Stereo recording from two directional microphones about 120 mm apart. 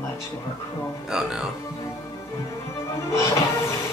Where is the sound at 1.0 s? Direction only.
5° right (ahead or behind).